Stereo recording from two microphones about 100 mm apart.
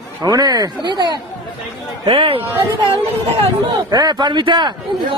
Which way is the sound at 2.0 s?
70° right (ahead or behind).